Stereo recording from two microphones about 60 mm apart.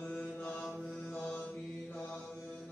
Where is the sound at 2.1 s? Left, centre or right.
Centre.